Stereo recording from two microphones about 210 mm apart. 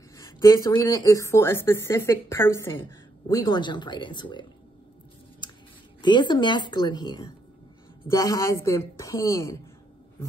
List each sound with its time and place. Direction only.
0.2 s speech: 15° left (ahead or behind)
5.4 s scissors: 20° left (ahead or behind)
6.0 s a woman's voice: 20° left (ahead or behind)